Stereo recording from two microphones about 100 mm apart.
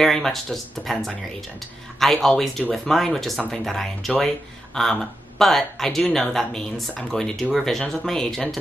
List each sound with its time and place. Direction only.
0.0 s speech: 5° left (ahead or behind)